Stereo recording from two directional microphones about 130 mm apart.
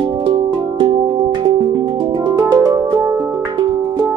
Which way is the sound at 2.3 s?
25° right (ahead or behind).